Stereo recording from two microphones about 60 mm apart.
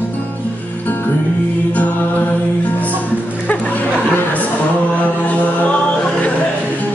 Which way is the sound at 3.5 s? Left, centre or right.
Left.